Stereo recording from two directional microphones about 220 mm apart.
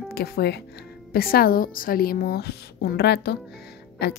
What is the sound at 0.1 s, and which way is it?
A woman's voice, 45° left (ahead or behind).